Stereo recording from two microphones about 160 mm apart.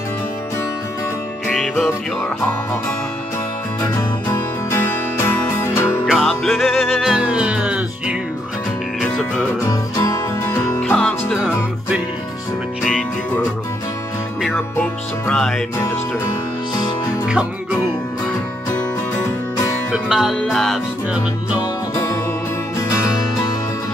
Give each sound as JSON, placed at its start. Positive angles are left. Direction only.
{"t": 1.8, "sound": "music", "side_deg": 10}
{"t": 4.3, "sound": "music", "side_deg": 15}
{"t": 6.0, "sound": "music", "side_deg": 0}
{"t": 9.0, "sound": "music", "side_deg": 5}
{"t": 9.7, "sound": "music", "side_deg": 25}
{"t": 10.5, "sound": "music", "side_deg": 10}
{"t": 11.3, "sound": "music", "side_deg": -5}
{"t": 14.8, "sound": "music", "side_deg": 5}
{"t": 17.3, "sound": "music", "side_deg": -5}
{"t": 19.9, "sound": "music", "side_deg": -5}
{"t": 21.5, "sound": "music", "side_deg": 20}